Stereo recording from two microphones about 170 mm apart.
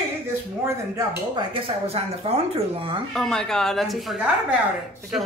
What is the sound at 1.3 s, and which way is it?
Speech, 35° right (ahead or behind).